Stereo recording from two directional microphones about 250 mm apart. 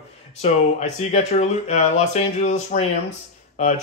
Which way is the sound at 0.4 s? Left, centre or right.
Left.